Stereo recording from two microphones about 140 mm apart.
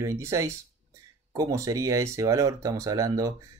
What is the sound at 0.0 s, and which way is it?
Speech, 20° right (ahead or behind).